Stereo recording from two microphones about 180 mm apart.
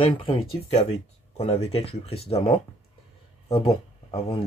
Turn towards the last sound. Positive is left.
turn(degrees=35)  # may be behind; listen again after turning